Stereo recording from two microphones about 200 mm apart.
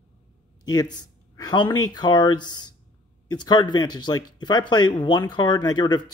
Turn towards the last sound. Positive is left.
turn(degrees=20)  # may be behind; listen again after turning